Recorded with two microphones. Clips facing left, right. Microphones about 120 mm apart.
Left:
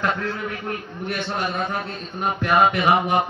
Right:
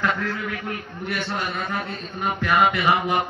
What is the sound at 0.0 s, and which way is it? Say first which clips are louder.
A man's voice: even; 25° left (ahead or behind).